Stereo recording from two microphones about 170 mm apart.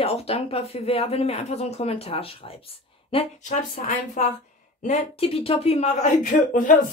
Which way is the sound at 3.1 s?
45° left (ahead or behind).